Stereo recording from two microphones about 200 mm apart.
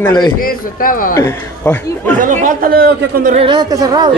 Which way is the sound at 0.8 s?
45° left (ahead or behind).